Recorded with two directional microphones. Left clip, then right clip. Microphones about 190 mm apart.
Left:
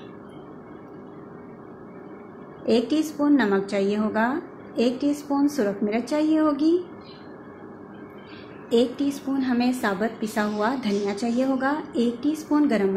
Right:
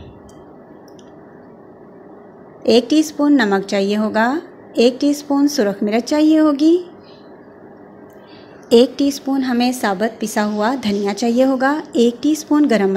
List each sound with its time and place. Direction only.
2.6 s a woman's voice: 35° right (ahead or behind)
8.6 s a woman's voice: 45° right (ahead or behind)